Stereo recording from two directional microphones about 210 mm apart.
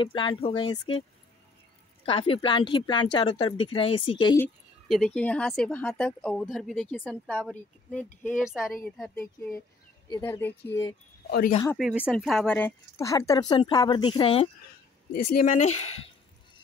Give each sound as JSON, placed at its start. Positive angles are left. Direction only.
{"t": 0.0, "sound": "speech", "side_deg": 25}
{"t": 2.0, "sound": "speech", "side_deg": 25}
{"t": 4.8, "sound": "speech", "side_deg": 0}
{"t": 11.2, "sound": "speech", "side_deg": 45}
{"t": 11.7, "sound": "speech", "side_deg": -5}
{"t": 15.1, "sound": "speech", "side_deg": 35}